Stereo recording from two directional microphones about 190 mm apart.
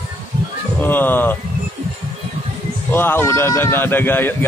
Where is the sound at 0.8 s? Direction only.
10° left (ahead or behind).